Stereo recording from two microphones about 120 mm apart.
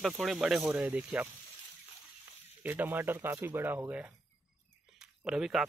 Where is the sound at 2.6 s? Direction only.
15° right (ahead or behind).